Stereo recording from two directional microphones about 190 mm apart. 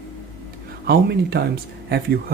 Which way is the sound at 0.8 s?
55° right (ahead or behind).